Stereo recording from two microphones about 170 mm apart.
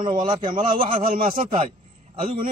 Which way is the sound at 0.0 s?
30° right (ahead or behind).